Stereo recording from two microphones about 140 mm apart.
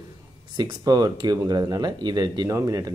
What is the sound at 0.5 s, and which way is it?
Speech, 30° right (ahead or behind).